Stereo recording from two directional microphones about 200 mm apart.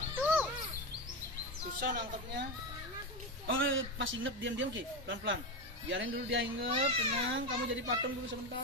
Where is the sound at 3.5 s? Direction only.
70° right (ahead or behind).